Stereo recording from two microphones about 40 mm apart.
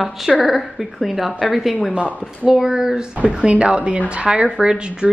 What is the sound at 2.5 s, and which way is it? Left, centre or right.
Speech, centre.